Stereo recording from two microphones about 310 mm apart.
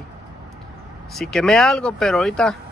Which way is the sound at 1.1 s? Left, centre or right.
Centre.